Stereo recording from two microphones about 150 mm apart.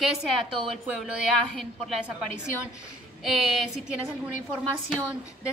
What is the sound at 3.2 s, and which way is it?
Speech, centre (ahead or behind).